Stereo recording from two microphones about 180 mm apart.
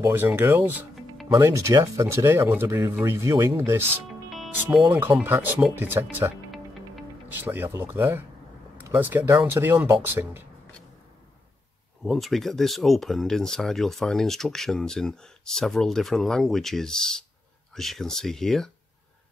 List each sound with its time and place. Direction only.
0.0 s speech: 10° right (ahead or behind)
7.3 s speech: 10° right (ahead or behind)
12.0 s speech: centre (ahead or behind)